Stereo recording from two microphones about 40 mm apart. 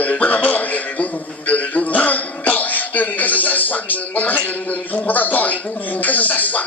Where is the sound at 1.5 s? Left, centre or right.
Left.